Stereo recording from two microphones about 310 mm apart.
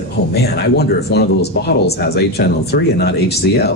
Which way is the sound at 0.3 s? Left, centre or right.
Left.